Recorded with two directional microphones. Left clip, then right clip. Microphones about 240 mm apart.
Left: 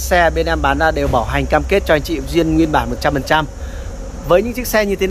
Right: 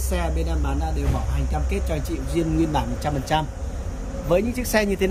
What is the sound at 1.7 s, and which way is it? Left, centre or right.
Speech, centre.